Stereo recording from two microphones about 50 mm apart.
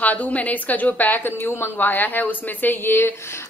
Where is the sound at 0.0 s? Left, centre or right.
Left.